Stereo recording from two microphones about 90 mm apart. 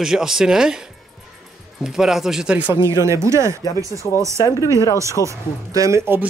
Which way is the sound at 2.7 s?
30° right (ahead or behind).